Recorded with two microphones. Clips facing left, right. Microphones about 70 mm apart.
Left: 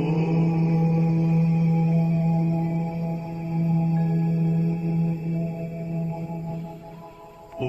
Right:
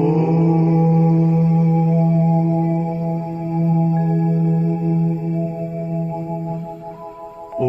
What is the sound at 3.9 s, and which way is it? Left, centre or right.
Singing bowl, right.